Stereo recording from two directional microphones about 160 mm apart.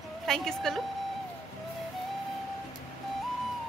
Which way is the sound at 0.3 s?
Centre (ahead or behind).